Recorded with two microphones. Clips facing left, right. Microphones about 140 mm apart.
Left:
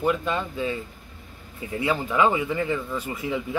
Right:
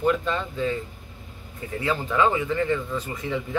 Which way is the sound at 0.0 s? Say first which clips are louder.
Right 1 dB; 10° left (ahead or behind).